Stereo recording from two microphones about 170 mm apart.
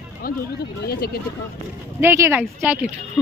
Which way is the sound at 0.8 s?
65° left (ahead or behind).